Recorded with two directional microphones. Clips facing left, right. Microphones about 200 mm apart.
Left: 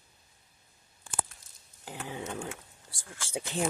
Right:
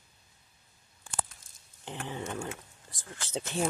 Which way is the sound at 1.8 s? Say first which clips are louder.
Right 1 dB; 10° left (ahead or behind).